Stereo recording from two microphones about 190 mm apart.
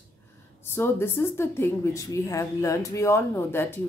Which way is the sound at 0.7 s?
10° left (ahead or behind).